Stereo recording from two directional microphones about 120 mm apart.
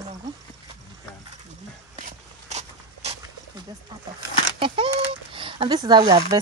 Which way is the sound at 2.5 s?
60° right (ahead or behind).